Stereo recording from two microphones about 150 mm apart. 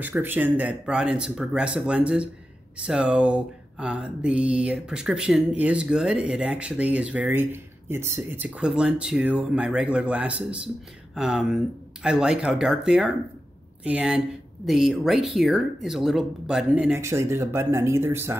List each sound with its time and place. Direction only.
0.0 s speech: 10° right (ahead or behind)
17.0 s speech: 20° right (ahead or behind)